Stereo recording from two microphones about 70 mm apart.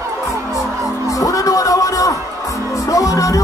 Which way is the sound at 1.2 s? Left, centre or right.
Left.